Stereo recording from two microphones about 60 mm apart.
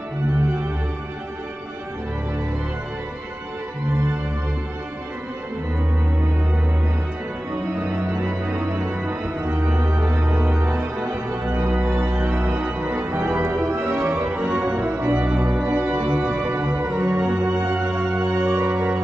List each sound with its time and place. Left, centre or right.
7.8 s music: right
9.8 s organ: right
10.8 s music: right
11.7 s music: right